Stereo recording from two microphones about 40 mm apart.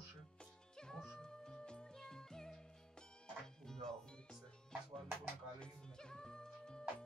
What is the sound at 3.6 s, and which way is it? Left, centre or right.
Music, centre.